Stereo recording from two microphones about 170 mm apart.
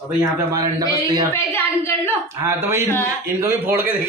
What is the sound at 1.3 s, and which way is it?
Speech, 10° left (ahead or behind).